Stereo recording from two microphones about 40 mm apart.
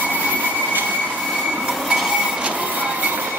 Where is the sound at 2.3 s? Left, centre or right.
Right.